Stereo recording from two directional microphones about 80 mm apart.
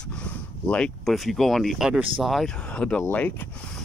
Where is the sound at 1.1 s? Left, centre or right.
Centre.